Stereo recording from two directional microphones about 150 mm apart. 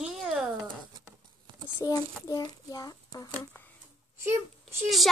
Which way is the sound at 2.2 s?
25° left (ahead or behind).